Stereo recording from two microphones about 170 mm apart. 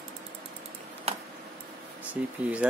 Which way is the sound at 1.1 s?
35° right (ahead or behind).